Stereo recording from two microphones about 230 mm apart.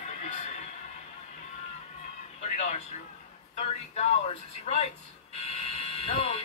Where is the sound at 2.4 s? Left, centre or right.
Left.